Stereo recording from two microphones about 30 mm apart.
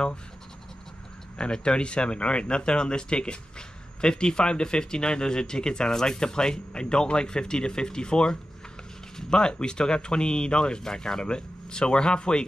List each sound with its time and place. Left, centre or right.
1.4 s speech: left